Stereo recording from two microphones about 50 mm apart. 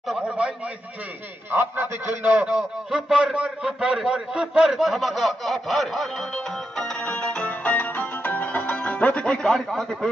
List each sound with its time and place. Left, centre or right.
0.1 s a man's voice: centre
1.5 s a sound: right
2.5 s a sound: centre
3.6 s a man's voice: centre
6.8 s music: centre
9.2 s a man's voice: centre